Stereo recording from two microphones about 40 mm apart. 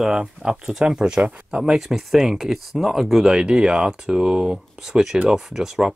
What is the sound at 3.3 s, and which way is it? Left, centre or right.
Speech, right.